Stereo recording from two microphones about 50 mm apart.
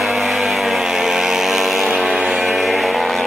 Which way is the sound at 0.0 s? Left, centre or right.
Centre.